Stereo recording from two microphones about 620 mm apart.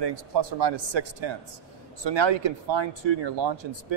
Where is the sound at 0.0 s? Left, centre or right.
Right.